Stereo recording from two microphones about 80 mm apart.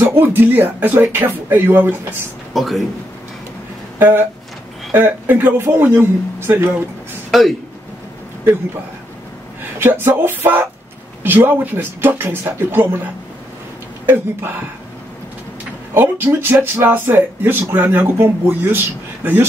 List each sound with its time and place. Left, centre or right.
0.0 s speech: right
2.5 s speech: centre
4.0 s speech: right
7.2 s speech: centre
9.8 s speech: right
15.9 s speech: right